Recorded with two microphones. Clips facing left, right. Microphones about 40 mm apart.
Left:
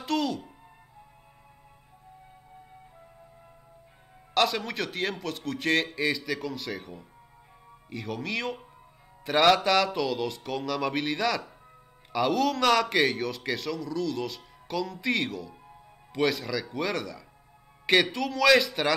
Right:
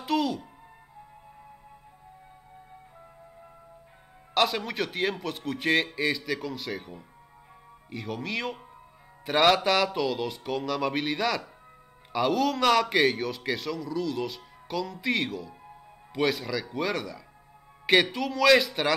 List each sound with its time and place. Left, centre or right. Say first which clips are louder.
0.0 s music: right 1 dB; centre
4.3 s a man's voice: even; centre